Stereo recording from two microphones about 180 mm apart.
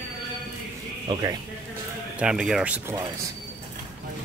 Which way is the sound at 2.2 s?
5° right (ahead or behind).